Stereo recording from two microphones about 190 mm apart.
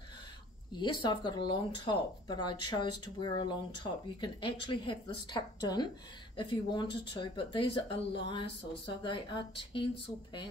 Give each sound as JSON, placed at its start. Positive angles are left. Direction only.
{"t": 0.7, "sound": "speech", "side_deg": 25}